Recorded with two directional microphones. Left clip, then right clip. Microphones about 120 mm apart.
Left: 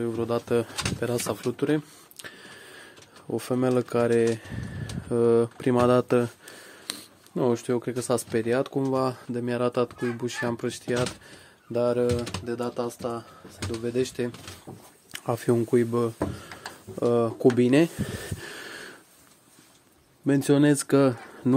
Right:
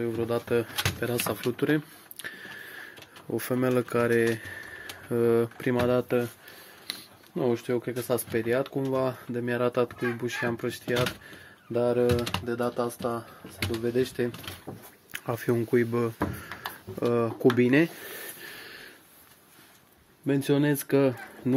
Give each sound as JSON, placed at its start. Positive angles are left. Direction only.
{"t": 0.0, "sound": "speech", "side_deg": 30}
{"t": 1.4, "sound": "speech", "side_deg": 10}
{"t": 2.2, "sound": "a sound", "side_deg": 20}
{"t": 3.3, "sound": "speech", "side_deg": 20}
{"t": 5.8, "sound": "speech", "side_deg": 60}
{"t": 7.3, "sound": "speech", "side_deg": 50}
{"t": 8.9, "sound": "speech", "side_deg": 30}
{"t": 11.7, "sound": "speech", "side_deg": 10}
{"t": 12.4, "sound": "speech", "side_deg": 0}
{"t": 15.1, "sound": "speech", "side_deg": 30}
{"t": 18.0, "sound": "wheeze", "side_deg": 70}
{"t": 20.2, "sound": "speech", "side_deg": 80}